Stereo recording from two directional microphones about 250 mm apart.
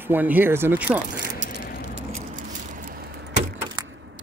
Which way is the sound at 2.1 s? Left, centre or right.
Right.